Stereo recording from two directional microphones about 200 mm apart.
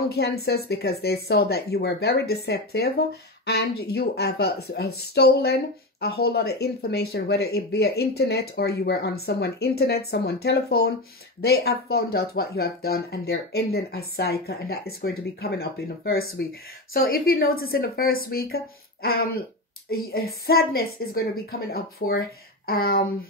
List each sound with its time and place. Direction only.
0.1 s speech: 55° left (ahead or behind)
20.4 s speech: 50° left (ahead or behind)